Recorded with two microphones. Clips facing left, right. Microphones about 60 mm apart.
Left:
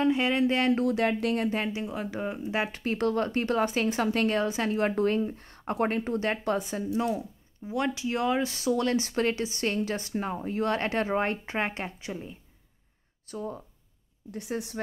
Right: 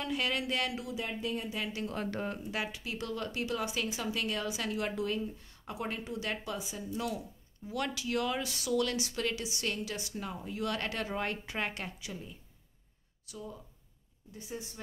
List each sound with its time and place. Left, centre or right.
0.0 s speech: left
0.7 s speech: left
1.7 s speech: left
2.0 s speech: centre
2.7 s speech: left
4.4 s speech: left
7.0 s speech: left
14.3 s a woman's voice: left